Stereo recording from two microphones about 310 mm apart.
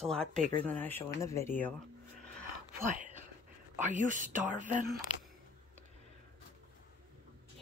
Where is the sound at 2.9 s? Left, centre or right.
Right.